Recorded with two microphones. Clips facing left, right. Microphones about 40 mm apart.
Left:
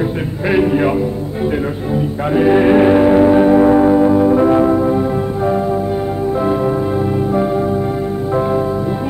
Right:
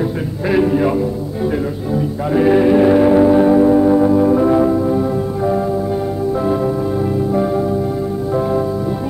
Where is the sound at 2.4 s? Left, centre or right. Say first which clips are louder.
Left 1 dB; centre.